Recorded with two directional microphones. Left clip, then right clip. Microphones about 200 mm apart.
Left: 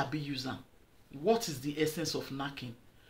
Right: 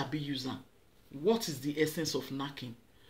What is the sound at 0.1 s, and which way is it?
Speech, 5° left (ahead or behind).